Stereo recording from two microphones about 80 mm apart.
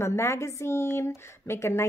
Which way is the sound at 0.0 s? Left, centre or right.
Left.